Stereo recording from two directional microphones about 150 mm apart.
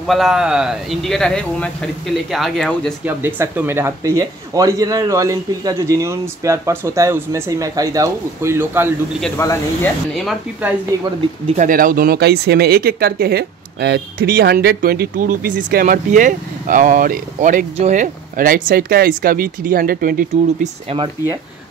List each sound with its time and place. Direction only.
0.0 s speech: centre (ahead or behind)
3.1 s speech: 15° right (ahead or behind)
9.4 s speech: 20° left (ahead or behind)
10.6 s speech: 5° right (ahead or behind)
11.4 s speech: 55° right (ahead or behind)